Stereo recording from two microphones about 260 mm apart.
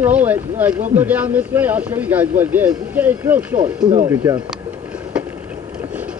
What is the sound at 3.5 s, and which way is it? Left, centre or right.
Speech, right.